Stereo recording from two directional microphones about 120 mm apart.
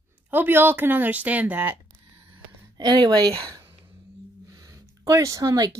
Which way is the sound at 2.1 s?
45° right (ahead or behind).